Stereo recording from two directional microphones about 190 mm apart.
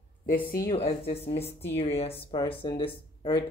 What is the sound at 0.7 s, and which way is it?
A woman's voice, 30° left (ahead or behind).